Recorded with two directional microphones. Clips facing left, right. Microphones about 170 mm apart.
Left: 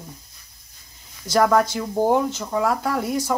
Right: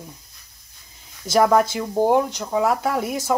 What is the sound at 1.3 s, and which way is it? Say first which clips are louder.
Speech: right 1 dB; 10° right (ahead or behind).